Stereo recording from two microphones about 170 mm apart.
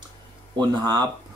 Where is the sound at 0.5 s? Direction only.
25° right (ahead or behind).